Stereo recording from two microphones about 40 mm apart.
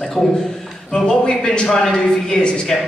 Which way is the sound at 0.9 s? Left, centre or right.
Centre.